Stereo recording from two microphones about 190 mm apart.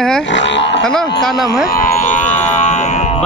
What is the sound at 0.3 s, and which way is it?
Music, 70° left (ahead or behind).